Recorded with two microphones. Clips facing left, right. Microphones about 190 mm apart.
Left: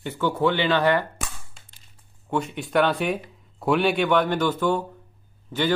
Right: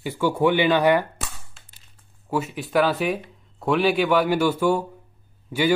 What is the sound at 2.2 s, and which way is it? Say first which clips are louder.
Speech: right 1 dB; 5° right (ahead or behind).